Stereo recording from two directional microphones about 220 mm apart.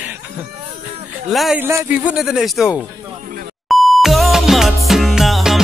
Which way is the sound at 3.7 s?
Centre (ahead or behind).